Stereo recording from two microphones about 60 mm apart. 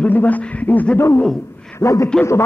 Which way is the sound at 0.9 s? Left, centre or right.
Left.